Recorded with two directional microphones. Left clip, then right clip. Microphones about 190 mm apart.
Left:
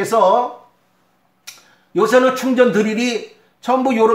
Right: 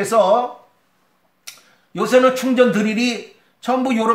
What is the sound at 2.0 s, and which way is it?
Speech, 35° right (ahead or behind).